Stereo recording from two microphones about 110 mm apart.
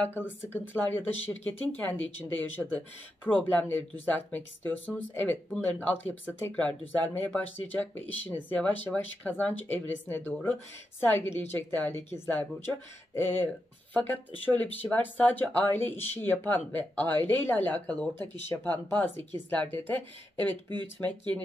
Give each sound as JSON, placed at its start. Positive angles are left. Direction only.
{"t": 0.5, "sound": "speech", "side_deg": 20}